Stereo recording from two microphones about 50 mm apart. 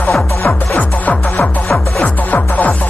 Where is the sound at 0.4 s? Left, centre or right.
Left.